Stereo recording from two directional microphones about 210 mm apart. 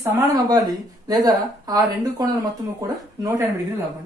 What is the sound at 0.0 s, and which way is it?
Speech, 15° right (ahead or behind).